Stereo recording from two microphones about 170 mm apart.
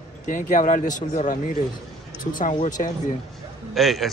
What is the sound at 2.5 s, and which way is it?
Speech, 45° left (ahead or behind).